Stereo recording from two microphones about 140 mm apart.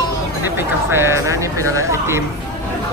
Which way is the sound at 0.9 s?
20° right (ahead or behind).